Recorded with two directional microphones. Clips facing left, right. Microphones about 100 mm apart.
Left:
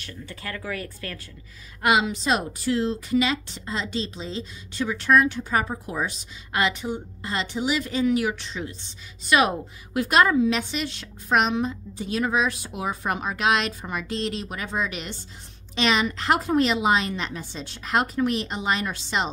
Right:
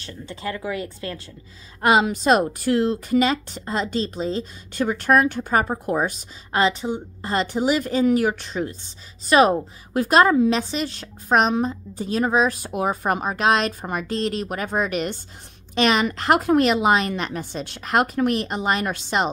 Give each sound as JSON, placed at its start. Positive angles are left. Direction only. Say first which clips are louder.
{"t": 0.0, "sound": "speech", "louder": "right 6 dB", "side_deg": -25}
{"t": 1.8, "sound": "speech", "louder": "right 4 dB", "side_deg": -40}
{"t": 6.5, "sound": "speech", "louder": "right 4 dB", "side_deg": -30}
{"t": 7.2, "sound": "a woman's voice", "louder": "right 5 dB", "side_deg": -45}